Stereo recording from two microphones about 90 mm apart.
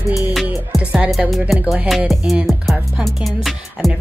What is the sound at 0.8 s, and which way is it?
Music, 15° right (ahead or behind).